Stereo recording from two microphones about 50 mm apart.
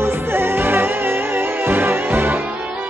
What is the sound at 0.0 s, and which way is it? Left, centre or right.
Music, right.